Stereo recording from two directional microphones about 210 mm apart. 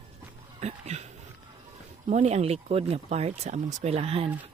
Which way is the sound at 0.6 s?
30° right (ahead or behind).